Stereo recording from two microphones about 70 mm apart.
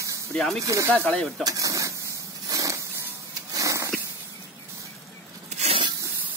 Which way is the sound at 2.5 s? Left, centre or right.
Right.